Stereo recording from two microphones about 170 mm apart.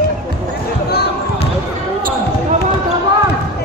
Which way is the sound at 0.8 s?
75° left (ahead or behind).